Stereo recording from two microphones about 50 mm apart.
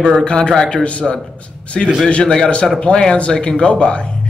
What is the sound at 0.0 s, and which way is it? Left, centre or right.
A man's voice, left.